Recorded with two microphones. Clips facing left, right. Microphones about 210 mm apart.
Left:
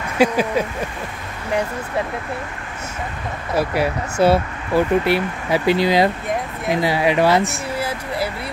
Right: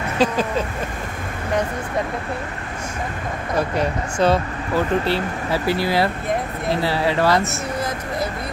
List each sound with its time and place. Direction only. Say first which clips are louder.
0.2 s speech: left 3 dB; 10° left (ahead or behind)
3.5 s speech: left 2 dB; 10° left (ahead or behind)